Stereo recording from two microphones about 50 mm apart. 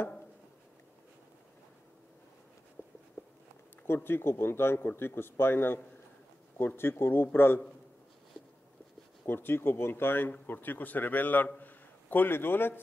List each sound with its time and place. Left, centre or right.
2.8 s a sound: left
3.8 s speech: left
9.2 s a man's voice: left